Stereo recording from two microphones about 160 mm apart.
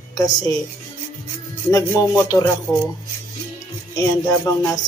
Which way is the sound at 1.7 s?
20° left (ahead or behind).